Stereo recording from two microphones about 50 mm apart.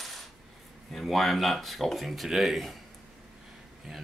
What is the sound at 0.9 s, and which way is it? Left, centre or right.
Speech, centre.